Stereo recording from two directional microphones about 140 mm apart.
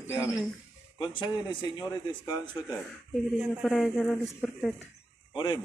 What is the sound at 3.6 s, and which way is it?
Speech, centre (ahead or behind).